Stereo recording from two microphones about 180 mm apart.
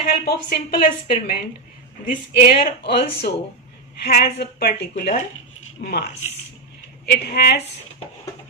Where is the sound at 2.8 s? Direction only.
60° left (ahead or behind).